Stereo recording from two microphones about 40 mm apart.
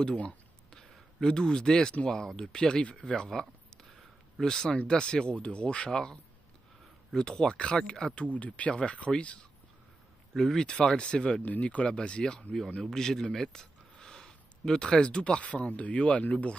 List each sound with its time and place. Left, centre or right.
0.7 s a sound: centre
2.0 s speech: centre
3.3 s a sound: centre
4.4 s speech: centre
5.9 s speech: centre
7.2 s speech: centre
8.3 s speech: left
10.3 s speech: centre
11.4 s speech: left